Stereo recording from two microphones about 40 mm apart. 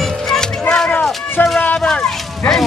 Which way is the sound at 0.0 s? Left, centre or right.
Centre.